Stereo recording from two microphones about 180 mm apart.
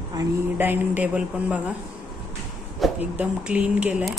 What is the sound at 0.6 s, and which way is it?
Speech, 10° right (ahead or behind).